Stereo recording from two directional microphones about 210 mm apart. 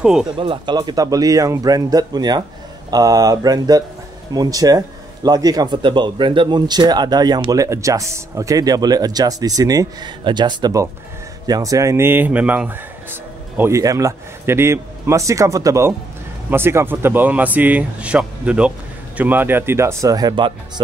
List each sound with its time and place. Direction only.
0.0 s speech: 5° right (ahead or behind)
0.4 s speech: 20° right (ahead or behind)